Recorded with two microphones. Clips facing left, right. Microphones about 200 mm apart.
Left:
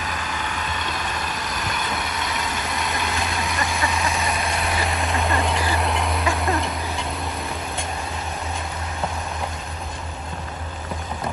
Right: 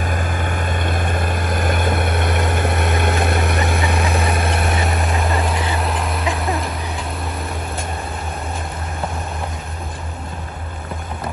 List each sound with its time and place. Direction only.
0.0 s vehicle: 50° right (ahead or behind)
5.0 s vehicle: centre (ahead or behind)